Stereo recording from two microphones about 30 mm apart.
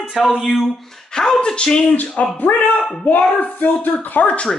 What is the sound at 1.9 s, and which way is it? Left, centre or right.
Speech, left.